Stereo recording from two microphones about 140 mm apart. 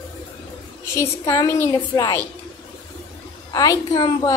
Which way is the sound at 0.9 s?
20° left (ahead or behind).